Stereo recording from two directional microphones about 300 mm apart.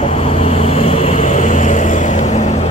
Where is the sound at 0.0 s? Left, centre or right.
Centre.